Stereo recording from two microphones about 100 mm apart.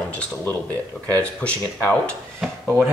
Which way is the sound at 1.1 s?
15° left (ahead or behind).